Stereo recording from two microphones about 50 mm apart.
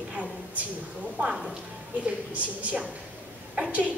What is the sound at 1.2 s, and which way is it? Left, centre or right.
A woman's voice, right.